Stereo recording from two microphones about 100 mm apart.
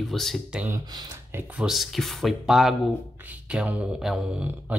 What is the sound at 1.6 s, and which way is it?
Speech, centre (ahead or behind).